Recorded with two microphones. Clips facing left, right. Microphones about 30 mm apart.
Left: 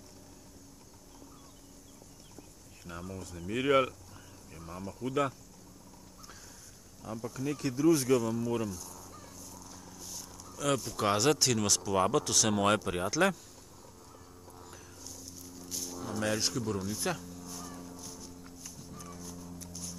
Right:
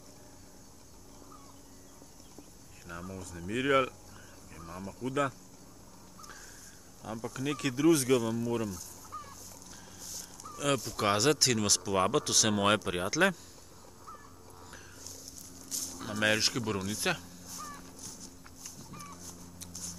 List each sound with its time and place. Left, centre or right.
2.8 s speech: centre
7.0 s speech: centre
7.3 s speech: right
8.1 s speech: centre
8.4 s a sound: centre
9.9 s dog: centre
10.4 s speech: centre
14.5 s dog: centre
15.4 s a sound: centre
16.2 s speech: right
17.2 s a sound: centre
17.5 s livestock: centre
17.9 s music: centre